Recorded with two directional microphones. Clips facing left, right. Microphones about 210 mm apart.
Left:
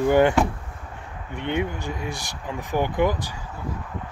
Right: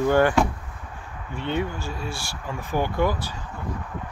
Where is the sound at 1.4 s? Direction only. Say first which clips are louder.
Left 1 dB; 15° left (ahead or behind).